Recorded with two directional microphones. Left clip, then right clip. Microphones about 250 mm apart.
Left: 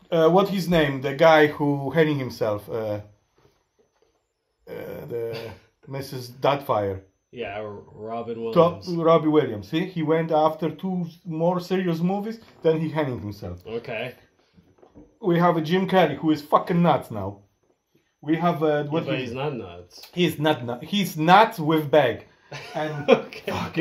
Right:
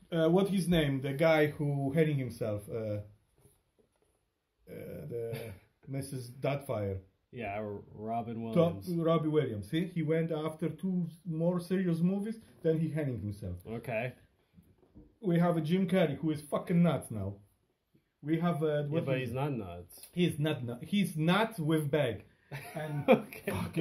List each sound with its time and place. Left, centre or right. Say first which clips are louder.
0.1 s speech: left 11 dB; centre
4.6 s grunt: left 10 dB; centre
5.9 s speech: left 9 dB; centre
7.3 s speech: left 6 dB; right
8.9 s speech: left 12 dB; centre
13.7 s speech: left 6 dB; right
15.1 s speech: left 11 dB; centre
19.0 s speech: left 7 dB; right
20.2 s speech: left 11 dB; centre